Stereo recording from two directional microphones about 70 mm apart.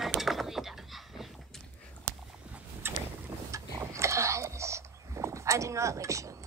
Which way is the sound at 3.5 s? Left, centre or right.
Right.